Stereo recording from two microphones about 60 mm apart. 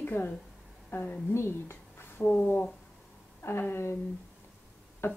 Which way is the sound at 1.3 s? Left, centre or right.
Left.